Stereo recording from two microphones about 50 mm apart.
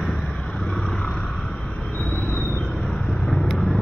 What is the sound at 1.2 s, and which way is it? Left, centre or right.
Vehicle, centre.